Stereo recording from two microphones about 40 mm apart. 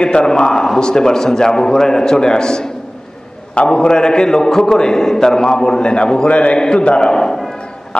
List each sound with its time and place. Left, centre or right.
0.0 s a man's voice: left
7.9 s music: left